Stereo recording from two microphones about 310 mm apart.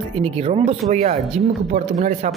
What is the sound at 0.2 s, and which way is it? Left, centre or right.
Speech, centre.